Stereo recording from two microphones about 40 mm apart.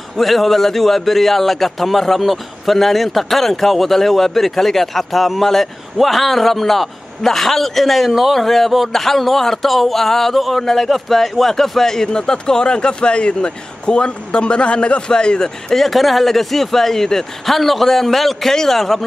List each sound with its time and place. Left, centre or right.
0.2 s a man's voice: centre
15.8 s a man's voice: centre